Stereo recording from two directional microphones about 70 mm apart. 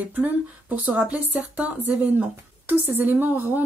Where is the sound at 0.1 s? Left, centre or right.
Right.